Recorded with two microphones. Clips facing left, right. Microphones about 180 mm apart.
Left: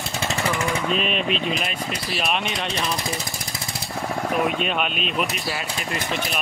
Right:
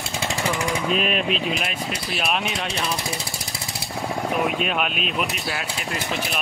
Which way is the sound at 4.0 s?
5° right (ahead or behind).